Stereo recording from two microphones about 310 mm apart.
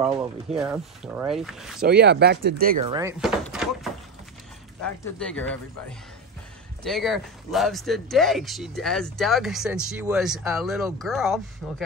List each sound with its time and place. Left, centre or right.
0.1 s speech: centre
0.6 s speech: centre
1.8 s speech: right
2.9 s speech: centre